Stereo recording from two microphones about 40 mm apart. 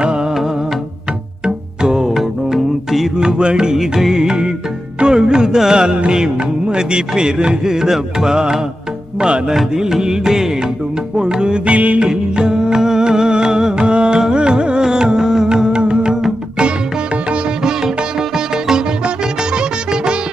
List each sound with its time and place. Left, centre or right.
1.4 s music: centre
2.1 s music: centre
3.3 s music: right
9.8 s music: centre; by 12.0 s right
12.0 s music: right